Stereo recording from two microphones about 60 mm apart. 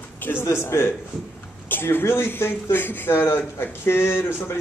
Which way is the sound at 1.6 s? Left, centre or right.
Left.